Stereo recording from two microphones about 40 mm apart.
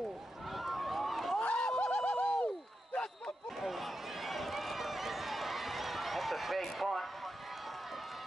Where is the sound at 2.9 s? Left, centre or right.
Left.